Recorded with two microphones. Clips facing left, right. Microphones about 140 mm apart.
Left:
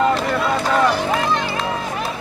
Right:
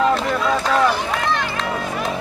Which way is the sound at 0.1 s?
Centre (ahead or behind).